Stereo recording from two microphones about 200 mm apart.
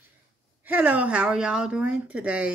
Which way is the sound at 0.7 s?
10° right (ahead or behind).